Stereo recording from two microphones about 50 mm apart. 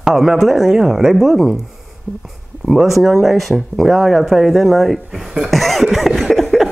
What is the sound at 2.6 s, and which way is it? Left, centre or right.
Speech, centre.